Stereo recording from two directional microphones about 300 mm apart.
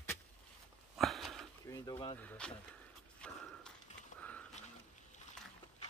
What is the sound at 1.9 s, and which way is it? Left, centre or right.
Speech, centre.